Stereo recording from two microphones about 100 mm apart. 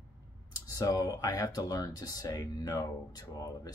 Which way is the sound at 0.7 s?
40° left (ahead or behind).